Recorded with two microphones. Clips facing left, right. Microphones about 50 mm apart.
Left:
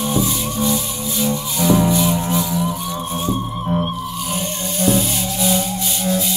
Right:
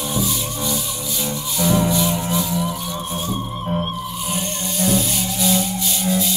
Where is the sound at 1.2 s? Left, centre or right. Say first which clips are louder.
Left 4 dB; centre.